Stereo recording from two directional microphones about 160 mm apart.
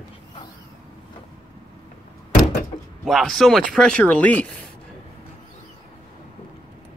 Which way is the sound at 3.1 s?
Centre (ahead or behind).